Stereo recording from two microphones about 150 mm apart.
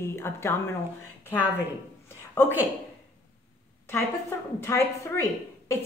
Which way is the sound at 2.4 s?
15° left (ahead or behind).